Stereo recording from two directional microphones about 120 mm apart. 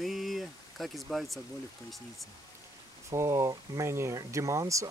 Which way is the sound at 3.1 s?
25° right (ahead or behind).